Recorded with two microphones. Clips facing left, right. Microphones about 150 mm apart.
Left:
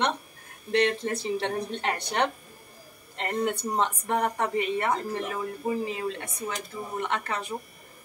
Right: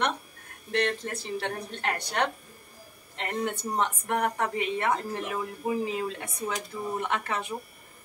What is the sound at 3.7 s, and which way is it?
Speech, 20° left (ahead or behind).